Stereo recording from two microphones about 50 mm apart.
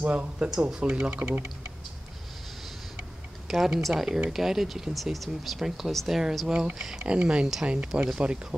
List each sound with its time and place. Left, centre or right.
0.0 s speech: right
0.5 s speech: centre
0.8 s speech: right
3.4 s speech: centre
6.4 s speech: centre
7.1 s speech: right